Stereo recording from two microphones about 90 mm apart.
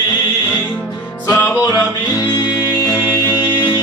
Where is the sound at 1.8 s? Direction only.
20° left (ahead or behind).